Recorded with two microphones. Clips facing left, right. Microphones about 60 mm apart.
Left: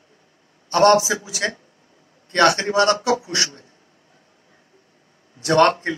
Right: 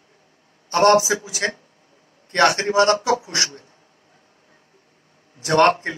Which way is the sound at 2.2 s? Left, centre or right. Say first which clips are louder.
Left 1 dB; right.